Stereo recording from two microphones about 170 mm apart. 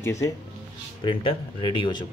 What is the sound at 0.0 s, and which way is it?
Speech, 20° left (ahead or behind).